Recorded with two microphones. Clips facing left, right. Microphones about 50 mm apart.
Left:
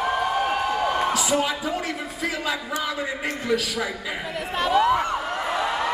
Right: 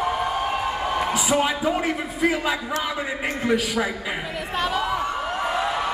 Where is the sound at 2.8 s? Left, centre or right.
Right.